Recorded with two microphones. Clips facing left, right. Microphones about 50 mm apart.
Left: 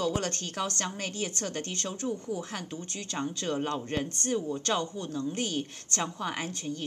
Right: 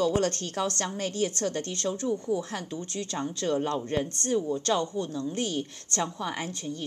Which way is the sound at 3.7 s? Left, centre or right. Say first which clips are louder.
Right 3 dB; left.